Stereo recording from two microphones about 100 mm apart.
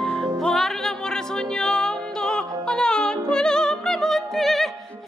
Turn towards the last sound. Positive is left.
turn(degrees=0)  # may be behind; listen again after turning